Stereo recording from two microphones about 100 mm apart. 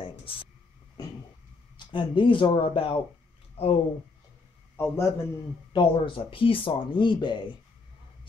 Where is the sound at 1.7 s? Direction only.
55° left (ahead or behind).